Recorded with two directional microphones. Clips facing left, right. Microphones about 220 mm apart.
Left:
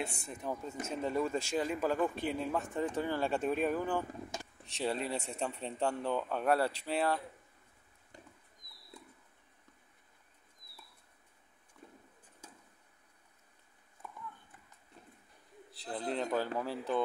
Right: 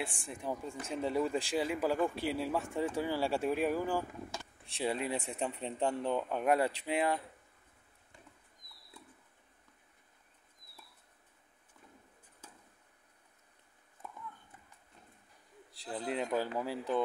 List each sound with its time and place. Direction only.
0.0 s speech: 15° right (ahead or behind)
15.7 s a man's voice: 10° right (ahead or behind)